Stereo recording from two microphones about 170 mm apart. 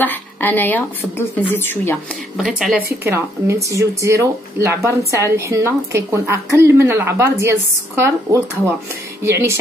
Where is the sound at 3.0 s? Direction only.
15° right (ahead or behind).